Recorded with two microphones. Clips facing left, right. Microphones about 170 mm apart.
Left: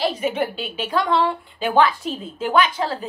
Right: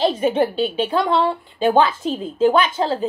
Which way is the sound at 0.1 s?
30° right (ahead or behind).